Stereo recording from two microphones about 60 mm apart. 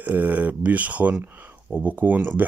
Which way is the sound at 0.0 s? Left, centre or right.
Right.